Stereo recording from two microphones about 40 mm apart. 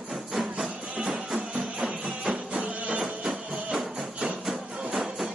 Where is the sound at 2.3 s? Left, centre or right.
Right.